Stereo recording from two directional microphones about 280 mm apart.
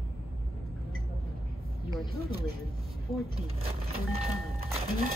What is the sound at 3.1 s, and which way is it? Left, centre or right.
Speech, centre.